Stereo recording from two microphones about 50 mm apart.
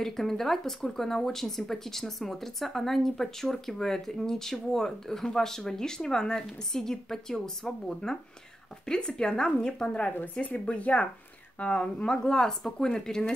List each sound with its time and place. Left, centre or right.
0.0 s speech: centre
10.4 s speech: left; by 13.2 s centre